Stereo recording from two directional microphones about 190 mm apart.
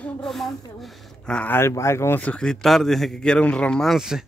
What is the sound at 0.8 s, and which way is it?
Speech, centre (ahead or behind).